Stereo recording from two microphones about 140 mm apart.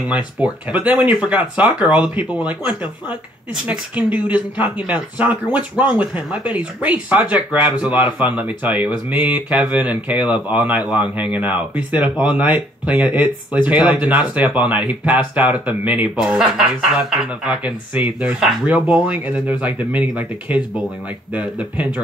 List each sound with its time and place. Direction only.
0.1 s speech: 10° right (ahead or behind)